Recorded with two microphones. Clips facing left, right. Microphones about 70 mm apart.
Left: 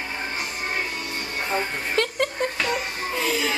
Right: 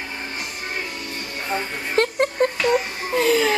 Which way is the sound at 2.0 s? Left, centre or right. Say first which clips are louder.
Right 5 dB; right.